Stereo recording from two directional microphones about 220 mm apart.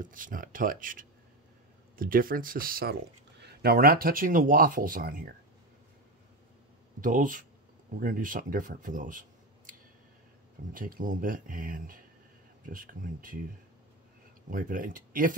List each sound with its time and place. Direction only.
0.0 s speech: 35° right (ahead or behind)
7.0 s speech: 35° right (ahead or behind)
10.7 s speech: 40° right (ahead or behind)
14.5 s speech: 40° right (ahead or behind)